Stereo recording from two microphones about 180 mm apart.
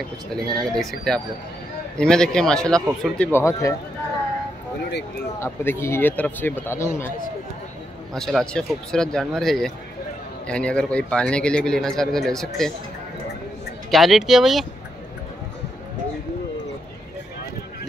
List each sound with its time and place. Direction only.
0.3 s speech: centre (ahead or behind)
3.3 s speech: 15° left (ahead or behind)
5.4 s speech: 15° left (ahead or behind)
8.1 s speech: centre (ahead or behind)
13.8 s speech: centre (ahead or behind)